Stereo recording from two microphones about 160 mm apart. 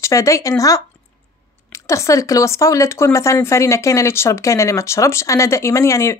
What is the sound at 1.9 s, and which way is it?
Speech, 20° left (ahead or behind).